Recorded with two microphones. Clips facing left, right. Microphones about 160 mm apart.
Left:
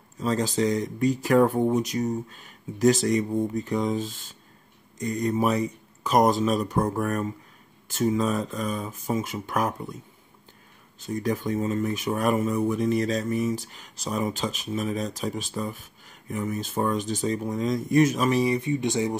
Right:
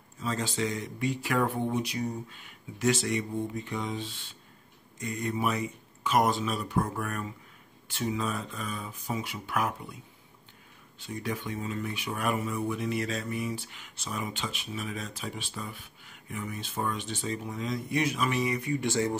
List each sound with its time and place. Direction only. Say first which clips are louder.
0.2 s speech: left 7 dB; 40° left (ahead or behind)
11.0 s speech: left 7 dB; 40° left (ahead or behind); by 19.1 s 20° left (ahead or behind)